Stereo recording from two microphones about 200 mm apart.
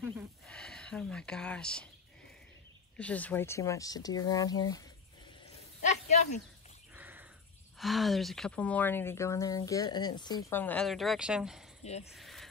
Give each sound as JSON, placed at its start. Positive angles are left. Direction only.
{"t": 0.5, "sound": "speech", "side_deg": 5}
{"t": 3.0, "sound": "speech", "side_deg": 5}
{"t": 5.9, "sound": "a sound", "side_deg": 35}
{"t": 6.9, "sound": "wild animals", "side_deg": -10}
{"t": 7.8, "sound": "speech", "side_deg": 0}
{"t": 10.5, "sound": "speech", "side_deg": 10}
{"t": 11.8, "sound": "speech", "side_deg": 30}
{"t": 12.1, "sound": "a sound", "side_deg": 0}